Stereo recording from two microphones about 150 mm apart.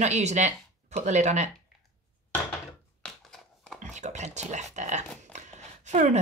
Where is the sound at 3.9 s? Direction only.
50° right (ahead or behind).